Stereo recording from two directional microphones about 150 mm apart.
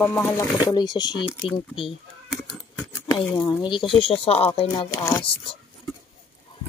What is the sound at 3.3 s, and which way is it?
Speech, 30° left (ahead or behind).